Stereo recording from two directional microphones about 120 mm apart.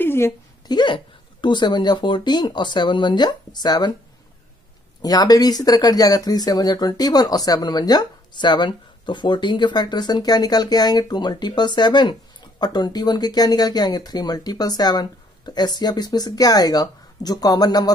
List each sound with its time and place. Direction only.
0.0 s a sound: 20° left (ahead or behind)
0.7 s speech: 40° left (ahead or behind)
5.0 s speech: 30° left (ahead or behind)